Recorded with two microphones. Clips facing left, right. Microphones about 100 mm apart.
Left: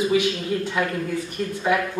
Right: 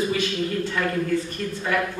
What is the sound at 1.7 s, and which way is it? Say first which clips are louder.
Speech: left 2 dB; 15° left (ahead or behind).